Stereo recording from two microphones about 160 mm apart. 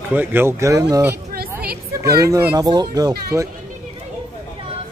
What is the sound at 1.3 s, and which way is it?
Music, 75° right (ahead or behind).